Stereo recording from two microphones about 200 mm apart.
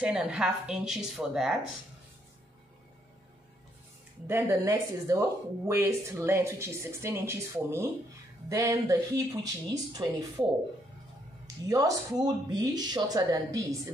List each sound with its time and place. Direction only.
0.0 s speech: 5° right (ahead or behind)
4.3 s speech: 15° right (ahead or behind)
11.4 s speech: 15° right (ahead or behind)